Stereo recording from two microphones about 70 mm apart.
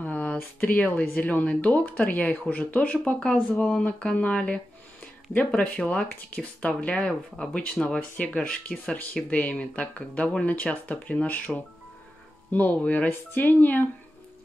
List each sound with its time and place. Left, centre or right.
0.0 s speech: left
3.1 s speech: centre
12.4 s speech: left